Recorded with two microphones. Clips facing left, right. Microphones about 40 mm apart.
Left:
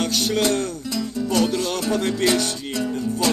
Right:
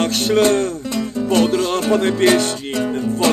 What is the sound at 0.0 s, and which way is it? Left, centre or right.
Music, right.